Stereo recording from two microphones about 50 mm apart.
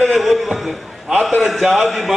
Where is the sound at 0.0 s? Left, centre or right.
Centre.